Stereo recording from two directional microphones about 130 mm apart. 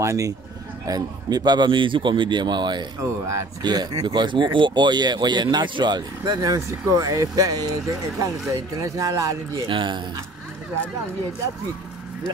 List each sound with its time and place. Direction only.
0.0 s speech: 25° right (ahead or behind)
9.7 s speech: 40° right (ahead or behind)